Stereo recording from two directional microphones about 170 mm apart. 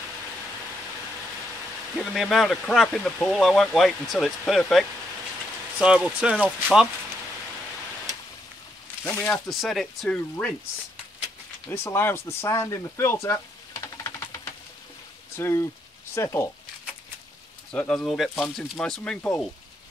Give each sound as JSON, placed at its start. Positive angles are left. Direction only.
{"t": 2.0, "sound": "speech", "side_deg": 0}
{"t": 9.0, "sound": "speech", "side_deg": 5}
{"t": 11.7, "sound": "speech", "side_deg": 15}
{"t": 17.6, "sound": "speech", "side_deg": 5}